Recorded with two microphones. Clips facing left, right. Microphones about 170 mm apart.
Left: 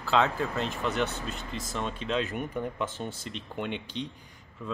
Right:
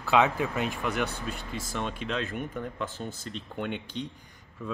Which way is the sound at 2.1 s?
10° left (ahead or behind).